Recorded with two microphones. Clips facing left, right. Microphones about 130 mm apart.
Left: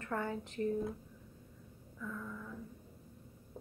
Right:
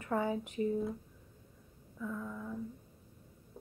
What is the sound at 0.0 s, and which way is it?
Speech, 10° right (ahead or behind).